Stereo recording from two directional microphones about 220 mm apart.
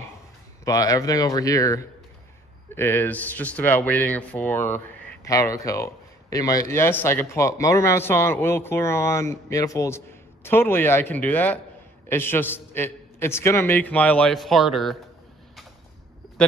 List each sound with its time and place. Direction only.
0.7 s a man's voice: 15° left (ahead or behind); by 15.0 s centre (ahead or behind)